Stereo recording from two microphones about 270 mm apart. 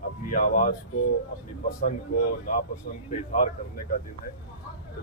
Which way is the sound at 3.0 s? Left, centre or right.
Left.